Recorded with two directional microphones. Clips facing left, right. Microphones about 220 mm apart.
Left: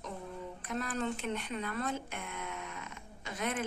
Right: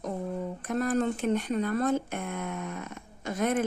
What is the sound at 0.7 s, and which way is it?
Speech, 45° right (ahead or behind).